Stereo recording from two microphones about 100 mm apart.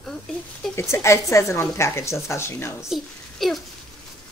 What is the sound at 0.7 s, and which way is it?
Speech, 25° left (ahead or behind).